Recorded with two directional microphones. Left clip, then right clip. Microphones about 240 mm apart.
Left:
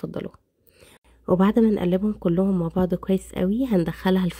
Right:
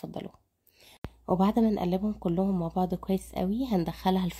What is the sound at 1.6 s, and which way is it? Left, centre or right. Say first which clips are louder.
Speech: left 7 dB; centre.